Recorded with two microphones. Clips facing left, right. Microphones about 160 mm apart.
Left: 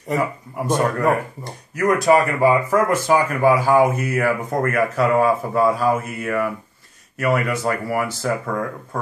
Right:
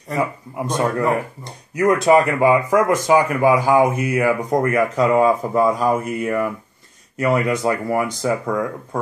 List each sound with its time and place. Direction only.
0.7 s speech: 20° right (ahead or behind)